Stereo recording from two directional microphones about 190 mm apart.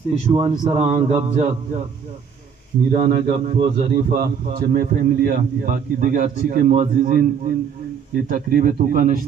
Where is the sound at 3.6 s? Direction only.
55° right (ahead or behind).